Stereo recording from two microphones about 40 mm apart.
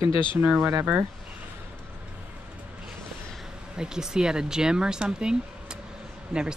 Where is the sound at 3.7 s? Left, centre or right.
Centre.